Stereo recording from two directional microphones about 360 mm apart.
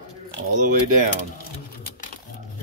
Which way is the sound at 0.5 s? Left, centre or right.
Right.